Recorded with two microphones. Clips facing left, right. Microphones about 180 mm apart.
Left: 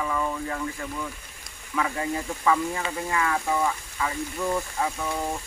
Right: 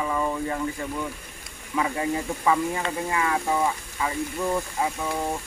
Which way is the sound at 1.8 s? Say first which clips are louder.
Right 2 dB; 20° right (ahead or behind).